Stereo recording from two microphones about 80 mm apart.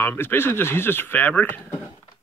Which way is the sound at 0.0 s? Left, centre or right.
Left.